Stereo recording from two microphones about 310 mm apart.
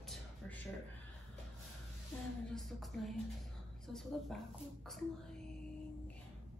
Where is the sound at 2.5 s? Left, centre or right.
Centre.